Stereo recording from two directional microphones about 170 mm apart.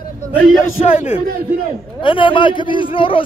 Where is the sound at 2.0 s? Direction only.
30° left (ahead or behind).